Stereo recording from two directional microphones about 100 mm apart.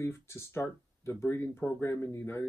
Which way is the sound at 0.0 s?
25° left (ahead or behind).